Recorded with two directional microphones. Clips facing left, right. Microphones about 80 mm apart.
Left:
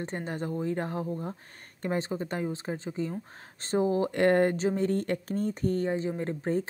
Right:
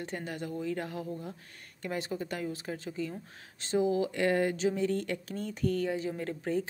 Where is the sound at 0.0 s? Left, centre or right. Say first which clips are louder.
Left 4 dB; left.